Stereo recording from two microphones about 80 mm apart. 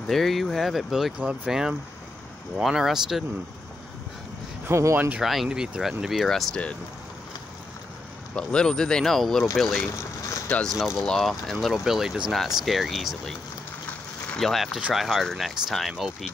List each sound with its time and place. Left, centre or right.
0.0 s speech: centre
1.1 s speech: centre
4.6 s speech: right
4.9 s speech: right
5.2 s speech: centre
8.4 s speech: centre
14.4 s speech: centre